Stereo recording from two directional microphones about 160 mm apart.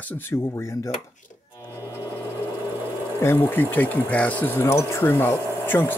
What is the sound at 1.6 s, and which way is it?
Music, 20° left (ahead or behind).